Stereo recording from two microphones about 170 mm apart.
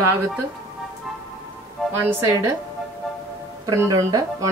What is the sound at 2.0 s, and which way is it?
Speech, 15° right (ahead or behind).